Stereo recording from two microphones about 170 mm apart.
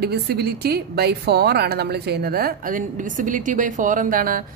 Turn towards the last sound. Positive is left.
turn(degrees=-55)  # may be behind; listen again after turning